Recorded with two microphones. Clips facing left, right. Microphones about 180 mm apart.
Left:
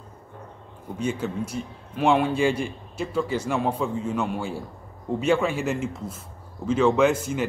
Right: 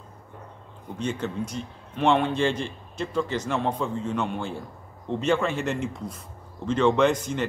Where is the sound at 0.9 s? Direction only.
10° left (ahead or behind).